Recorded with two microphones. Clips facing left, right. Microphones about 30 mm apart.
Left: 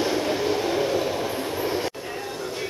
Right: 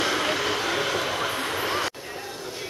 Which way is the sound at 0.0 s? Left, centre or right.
Right.